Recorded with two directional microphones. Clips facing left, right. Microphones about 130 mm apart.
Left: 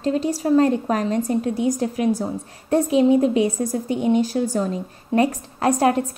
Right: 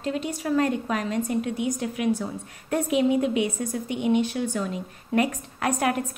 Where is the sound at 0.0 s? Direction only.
35° left (ahead or behind).